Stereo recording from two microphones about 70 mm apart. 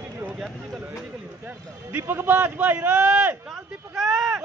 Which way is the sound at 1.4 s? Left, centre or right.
Right.